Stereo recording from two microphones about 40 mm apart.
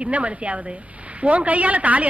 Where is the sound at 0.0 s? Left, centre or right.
Right.